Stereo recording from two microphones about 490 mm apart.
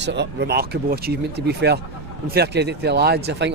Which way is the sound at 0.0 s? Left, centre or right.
Right.